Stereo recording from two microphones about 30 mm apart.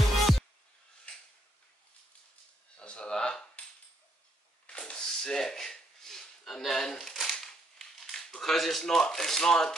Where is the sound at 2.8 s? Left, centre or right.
Left.